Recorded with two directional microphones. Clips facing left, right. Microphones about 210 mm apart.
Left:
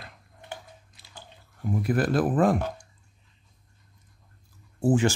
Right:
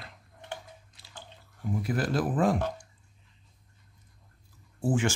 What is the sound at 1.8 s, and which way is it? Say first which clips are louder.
Speech: left 5 dB; 55° left (ahead or behind).